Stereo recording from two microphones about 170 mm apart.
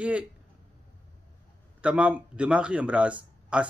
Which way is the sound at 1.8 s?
5° right (ahead or behind).